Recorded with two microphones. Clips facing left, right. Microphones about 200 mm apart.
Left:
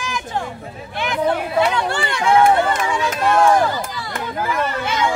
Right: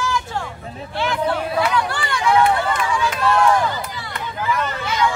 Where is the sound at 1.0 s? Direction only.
20° left (ahead or behind).